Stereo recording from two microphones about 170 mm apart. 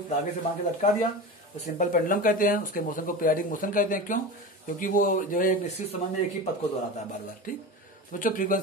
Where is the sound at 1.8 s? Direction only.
50° left (ahead or behind).